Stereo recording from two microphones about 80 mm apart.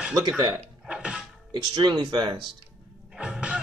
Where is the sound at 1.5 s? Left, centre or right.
Right.